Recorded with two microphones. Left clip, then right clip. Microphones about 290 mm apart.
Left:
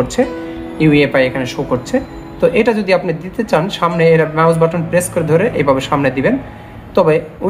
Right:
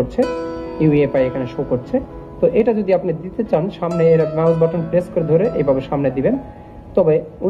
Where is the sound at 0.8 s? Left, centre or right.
Centre.